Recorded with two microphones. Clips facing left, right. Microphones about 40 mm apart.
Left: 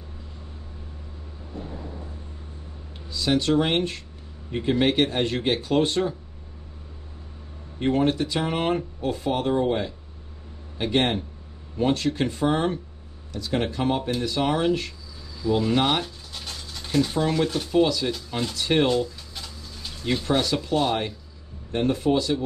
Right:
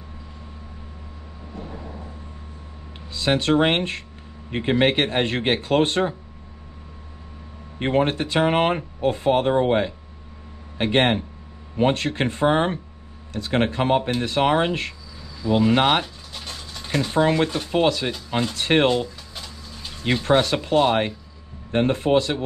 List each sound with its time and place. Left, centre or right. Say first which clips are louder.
3.1 s speech: right 2 dB; right
7.8 s speech: right 1 dB; right
15.5 s speech: right 4 dB; right
16.3 s dog: right 2 dB; centre
17.2 s speech: right 4 dB; right
18.9 s a sound: right 2 dB; right
20.2 s speech: right 5 dB; right